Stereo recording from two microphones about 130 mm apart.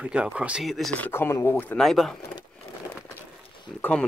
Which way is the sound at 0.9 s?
15° left (ahead or behind).